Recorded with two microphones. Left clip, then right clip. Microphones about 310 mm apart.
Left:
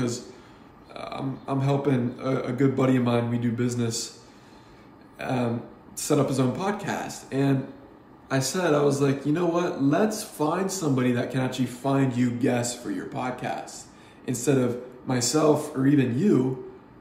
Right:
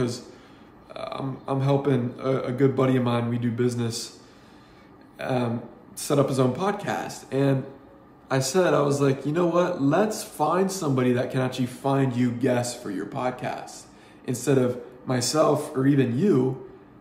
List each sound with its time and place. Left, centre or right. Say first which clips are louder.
0.9 s speech: right 1 dB; centre
5.2 s speech: right 1 dB; centre